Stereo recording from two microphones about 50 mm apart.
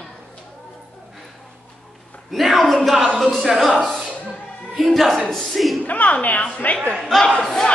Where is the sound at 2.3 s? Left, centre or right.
Centre.